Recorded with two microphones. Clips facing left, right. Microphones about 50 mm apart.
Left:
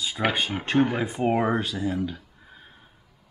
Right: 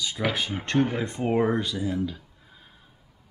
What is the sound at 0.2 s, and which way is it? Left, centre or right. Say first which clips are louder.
Speech: left 3 dB; centre.